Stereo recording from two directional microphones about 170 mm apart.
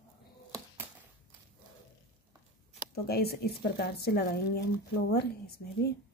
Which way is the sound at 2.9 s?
65° left (ahead or behind).